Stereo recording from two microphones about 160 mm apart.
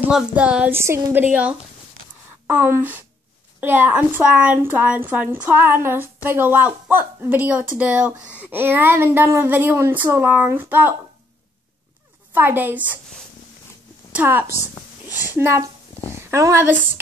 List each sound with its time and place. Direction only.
0.0 s a woman's voice: 10° right (ahead or behind)
12.4 s a woman's voice: 10° right (ahead or behind)
14.1 s a woman's voice: 10° right (ahead or behind)
15.0 s a woman's voice: 20° left (ahead or behind)
15.3 s a woman's voice: 15° right (ahead or behind)